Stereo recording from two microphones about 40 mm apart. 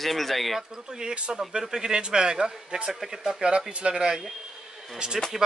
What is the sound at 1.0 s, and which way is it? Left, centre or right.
Speech, centre.